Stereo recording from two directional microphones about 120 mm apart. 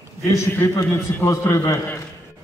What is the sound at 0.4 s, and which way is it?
A man's voice, 20° left (ahead or behind).